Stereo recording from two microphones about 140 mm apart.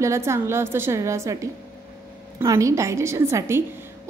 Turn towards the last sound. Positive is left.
turn(degrees=-20)  # may be behind; listen again after turning